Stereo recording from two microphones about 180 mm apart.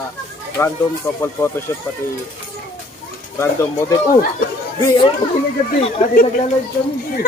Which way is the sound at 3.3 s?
15° left (ahead or behind).